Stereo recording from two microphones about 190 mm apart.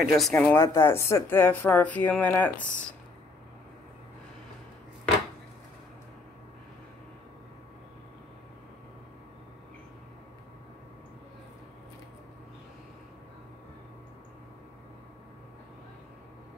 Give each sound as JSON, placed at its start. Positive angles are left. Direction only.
{"t": 0.0, "sound": "speech", "side_deg": 0}